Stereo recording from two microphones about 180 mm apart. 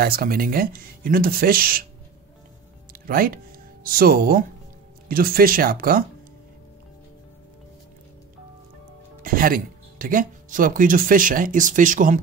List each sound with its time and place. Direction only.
0.0 s speech: 55° right (ahead or behind)
2.9 s music: 55° right (ahead or behind)
3.8 s speech: 55° right (ahead or behind)
9.2 s speech: 55° right (ahead or behind)